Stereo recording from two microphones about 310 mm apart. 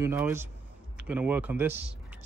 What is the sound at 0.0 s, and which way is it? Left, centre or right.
Speech, centre.